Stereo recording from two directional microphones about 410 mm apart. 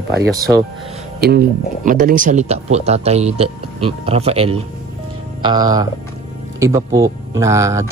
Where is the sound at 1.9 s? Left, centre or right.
Centre.